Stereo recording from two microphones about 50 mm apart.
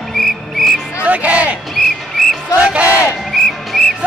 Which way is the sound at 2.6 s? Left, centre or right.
Right.